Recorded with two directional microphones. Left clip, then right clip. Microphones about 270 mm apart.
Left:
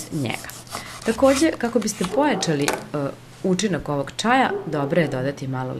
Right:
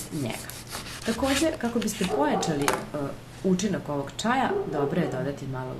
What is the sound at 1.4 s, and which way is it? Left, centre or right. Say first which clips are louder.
Speech: left 6 dB; left.